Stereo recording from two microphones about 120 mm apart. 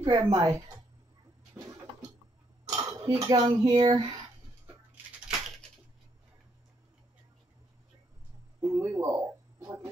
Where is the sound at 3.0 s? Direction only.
30° right (ahead or behind).